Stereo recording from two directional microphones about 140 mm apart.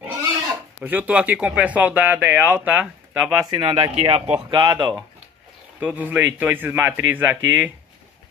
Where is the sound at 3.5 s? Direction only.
30° right (ahead or behind).